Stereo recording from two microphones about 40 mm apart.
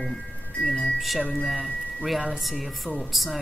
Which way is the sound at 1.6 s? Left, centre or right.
Centre.